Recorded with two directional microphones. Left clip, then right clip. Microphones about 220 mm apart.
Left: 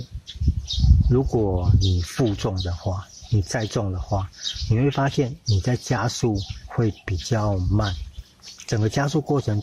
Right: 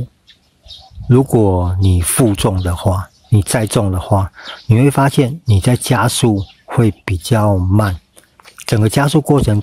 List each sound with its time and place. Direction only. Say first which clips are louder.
1.1 s speech: right 10 dB; 45° right (ahead or behind)